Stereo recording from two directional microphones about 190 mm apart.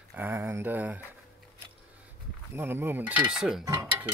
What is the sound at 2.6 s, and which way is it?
Speech, 10° right (ahead or behind).